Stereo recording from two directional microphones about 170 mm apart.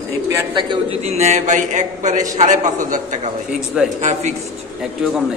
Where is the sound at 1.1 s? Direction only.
40° right (ahead or behind).